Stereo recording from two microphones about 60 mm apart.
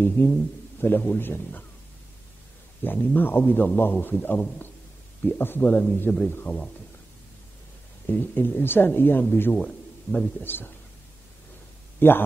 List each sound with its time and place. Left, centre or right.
0.0 s speech: left
2.8 s speech: left
8.1 s speech: left
9.5 s a man's voice: left
10.1 s a man's voice: left
12.0 s speech: left